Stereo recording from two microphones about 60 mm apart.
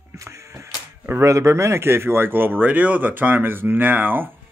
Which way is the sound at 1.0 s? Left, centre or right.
Right.